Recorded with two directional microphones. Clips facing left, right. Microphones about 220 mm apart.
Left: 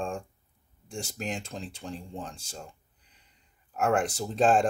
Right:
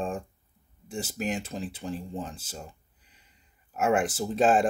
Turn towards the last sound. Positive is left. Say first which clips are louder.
# right 1 dB
turn(degrees=-5)  # may be behind; listen again after turning